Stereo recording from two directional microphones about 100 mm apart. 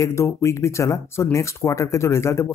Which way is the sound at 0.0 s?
30° left (ahead or behind).